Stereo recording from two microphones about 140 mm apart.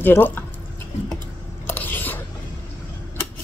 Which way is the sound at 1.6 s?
15° left (ahead or behind).